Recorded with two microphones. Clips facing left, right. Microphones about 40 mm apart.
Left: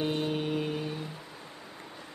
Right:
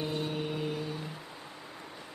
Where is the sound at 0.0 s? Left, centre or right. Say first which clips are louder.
Left 4 dB; left.